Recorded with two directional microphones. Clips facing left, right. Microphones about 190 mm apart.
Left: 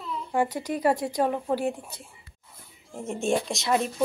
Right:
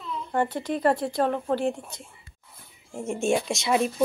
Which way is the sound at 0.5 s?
10° left (ahead or behind).